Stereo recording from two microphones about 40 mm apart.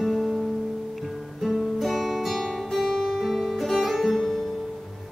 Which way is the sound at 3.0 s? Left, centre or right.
Centre.